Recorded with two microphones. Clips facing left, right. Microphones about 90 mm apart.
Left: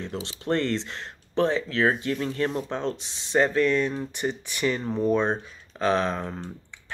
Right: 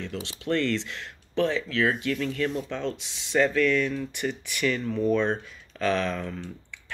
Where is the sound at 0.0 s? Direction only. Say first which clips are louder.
Left 1 dB; 30° left (ahead or behind).